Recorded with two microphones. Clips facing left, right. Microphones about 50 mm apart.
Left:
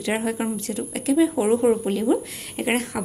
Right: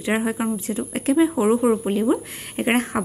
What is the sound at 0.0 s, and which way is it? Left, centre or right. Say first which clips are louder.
Speech: right 2 dB; centre.